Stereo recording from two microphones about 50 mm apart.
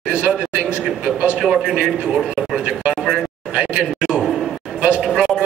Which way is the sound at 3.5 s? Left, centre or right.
Centre.